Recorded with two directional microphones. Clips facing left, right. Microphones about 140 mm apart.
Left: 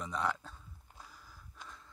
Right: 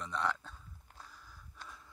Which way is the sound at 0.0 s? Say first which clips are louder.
Left 1 dB; 5° left (ahead or behind).